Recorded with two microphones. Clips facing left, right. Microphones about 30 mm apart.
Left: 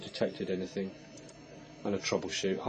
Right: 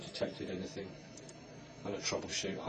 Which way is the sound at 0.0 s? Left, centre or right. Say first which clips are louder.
Left 5 dB; left.